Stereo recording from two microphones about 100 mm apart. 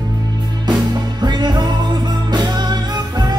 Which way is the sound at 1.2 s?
45° right (ahead or behind).